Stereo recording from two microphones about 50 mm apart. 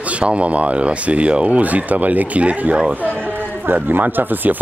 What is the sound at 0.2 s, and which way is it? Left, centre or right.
Speech, right.